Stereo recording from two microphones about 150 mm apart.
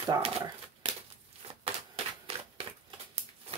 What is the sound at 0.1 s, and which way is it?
Speech, 25° right (ahead or behind).